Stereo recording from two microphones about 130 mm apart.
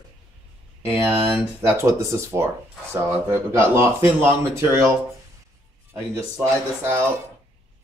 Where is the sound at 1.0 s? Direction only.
20° right (ahead or behind).